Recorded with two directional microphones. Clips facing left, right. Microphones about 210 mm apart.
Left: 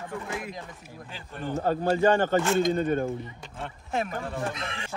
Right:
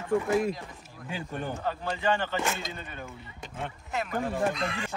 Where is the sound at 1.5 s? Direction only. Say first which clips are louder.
Left 8 dB; 45° left (ahead or behind).